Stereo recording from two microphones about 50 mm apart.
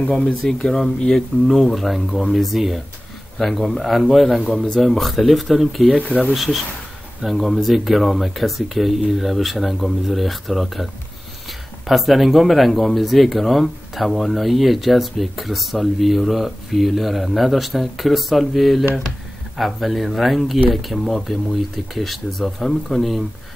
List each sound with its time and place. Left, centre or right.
0.3 s speech: centre
5.9 s speech: left
6.3 s speech: centre
11.9 s speech: centre